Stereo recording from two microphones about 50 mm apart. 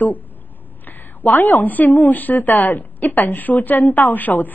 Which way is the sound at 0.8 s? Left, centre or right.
Left.